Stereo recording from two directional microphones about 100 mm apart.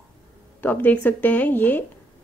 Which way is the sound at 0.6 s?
20° left (ahead or behind).